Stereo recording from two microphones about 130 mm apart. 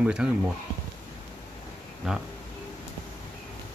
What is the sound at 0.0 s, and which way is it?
Speech, 5° right (ahead or behind).